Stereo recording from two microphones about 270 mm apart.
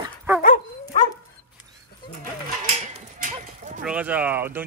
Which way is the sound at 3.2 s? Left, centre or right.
Right.